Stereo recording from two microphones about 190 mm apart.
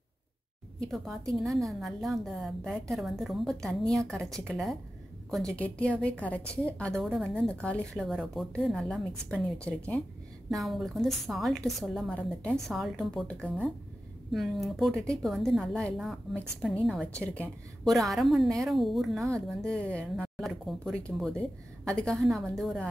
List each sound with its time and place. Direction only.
0.7 s a woman's voice: centre (ahead or behind)